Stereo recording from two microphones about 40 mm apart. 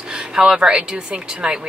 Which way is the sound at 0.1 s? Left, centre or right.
Right.